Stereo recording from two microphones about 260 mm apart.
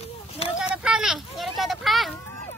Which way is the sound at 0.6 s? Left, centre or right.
Centre.